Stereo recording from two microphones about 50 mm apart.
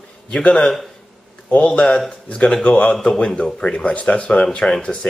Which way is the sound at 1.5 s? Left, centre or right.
Left.